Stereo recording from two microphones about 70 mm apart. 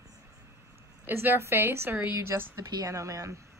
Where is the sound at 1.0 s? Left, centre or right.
Right.